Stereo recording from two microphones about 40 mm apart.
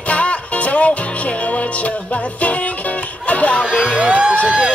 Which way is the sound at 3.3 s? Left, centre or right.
Left.